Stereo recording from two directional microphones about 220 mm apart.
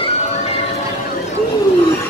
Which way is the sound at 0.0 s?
30° left (ahead or behind).